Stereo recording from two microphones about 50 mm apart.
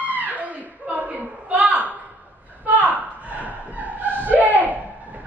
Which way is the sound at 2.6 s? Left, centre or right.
Right.